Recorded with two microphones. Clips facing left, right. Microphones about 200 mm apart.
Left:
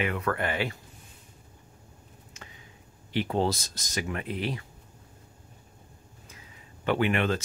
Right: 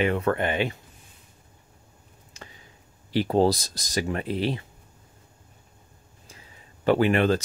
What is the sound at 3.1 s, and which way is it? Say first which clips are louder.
Speech: right 6 dB; 35° right (ahead or behind).